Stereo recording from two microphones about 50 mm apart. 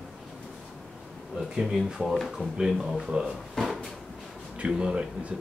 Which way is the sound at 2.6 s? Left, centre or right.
Centre.